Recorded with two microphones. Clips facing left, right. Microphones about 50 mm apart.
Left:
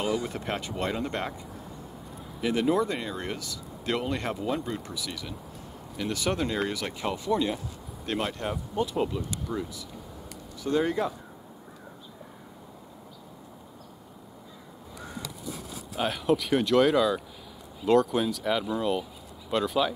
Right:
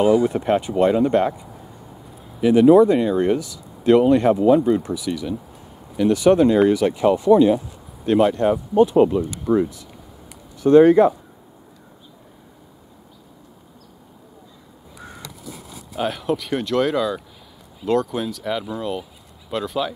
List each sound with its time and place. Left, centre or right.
0.0 s speech: right
8.4 s speech: right
15.9 s speech: centre